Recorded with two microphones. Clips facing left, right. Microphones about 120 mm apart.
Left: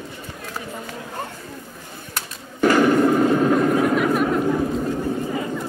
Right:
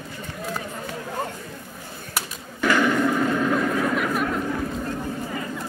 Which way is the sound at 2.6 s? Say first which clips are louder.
Left 5 dB; 40° left (ahead or behind).